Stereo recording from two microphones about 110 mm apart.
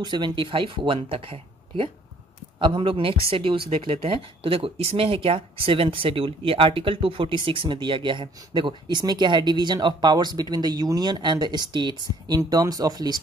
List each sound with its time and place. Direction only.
0.0 s speech: 45° right (ahead or behind)